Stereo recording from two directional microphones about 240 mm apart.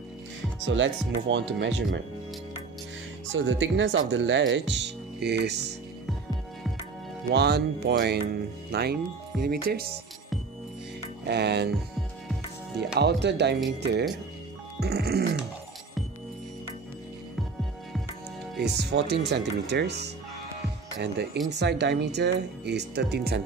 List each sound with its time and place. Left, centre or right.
0.7 s speech: right
3.3 s speech: right
7.2 s speech: right
11.2 s speech: right
12.7 s speech: right
18.7 s speech: right